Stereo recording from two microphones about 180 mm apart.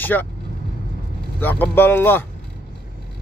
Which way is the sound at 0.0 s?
10° left (ahead or behind).